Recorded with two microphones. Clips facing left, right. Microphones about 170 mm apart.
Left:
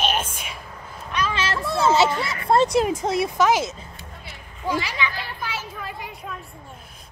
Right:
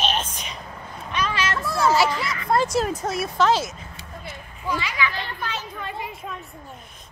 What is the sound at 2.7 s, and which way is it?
Speech, 15° left (ahead or behind).